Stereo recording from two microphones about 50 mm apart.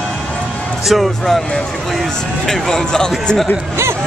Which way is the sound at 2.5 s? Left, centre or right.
Centre.